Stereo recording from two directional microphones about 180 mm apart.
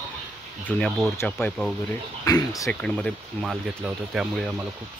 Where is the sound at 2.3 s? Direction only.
20° left (ahead or behind).